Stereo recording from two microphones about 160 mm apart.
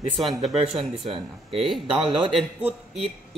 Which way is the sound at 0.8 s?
35° right (ahead or behind).